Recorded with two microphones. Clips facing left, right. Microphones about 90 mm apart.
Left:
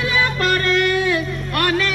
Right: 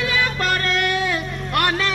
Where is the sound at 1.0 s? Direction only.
30° right (ahead or behind).